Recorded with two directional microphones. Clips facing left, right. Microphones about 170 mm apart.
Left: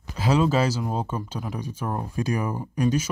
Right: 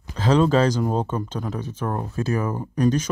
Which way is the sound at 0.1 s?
10° left (ahead or behind).